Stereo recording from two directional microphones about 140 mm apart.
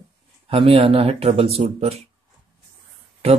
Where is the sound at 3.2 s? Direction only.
45° right (ahead or behind).